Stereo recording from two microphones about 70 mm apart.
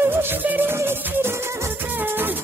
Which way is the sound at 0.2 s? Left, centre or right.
Right.